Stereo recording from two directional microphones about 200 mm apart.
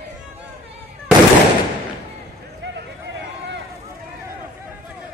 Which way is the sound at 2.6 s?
60° right (ahead or behind).